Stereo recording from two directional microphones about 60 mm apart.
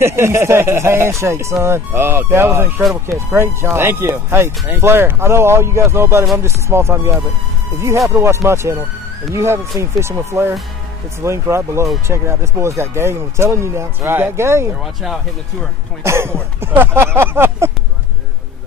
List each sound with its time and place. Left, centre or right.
0.0 s speech: right
3.6 s speech: right
8.1 s speech: right
16.0 s speech: right